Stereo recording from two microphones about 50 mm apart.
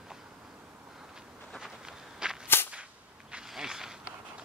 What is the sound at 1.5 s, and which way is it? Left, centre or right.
Walk, centre.